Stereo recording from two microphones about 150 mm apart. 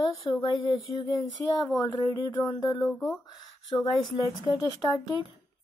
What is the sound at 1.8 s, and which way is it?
Speech, 20° left (ahead or behind).